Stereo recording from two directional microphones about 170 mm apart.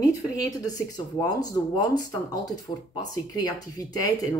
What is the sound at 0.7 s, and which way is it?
Speech, 20° left (ahead or behind).